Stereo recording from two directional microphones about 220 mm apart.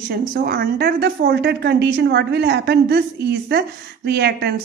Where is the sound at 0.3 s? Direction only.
45° right (ahead or behind).